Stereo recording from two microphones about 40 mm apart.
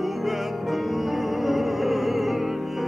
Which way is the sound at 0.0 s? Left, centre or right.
Centre.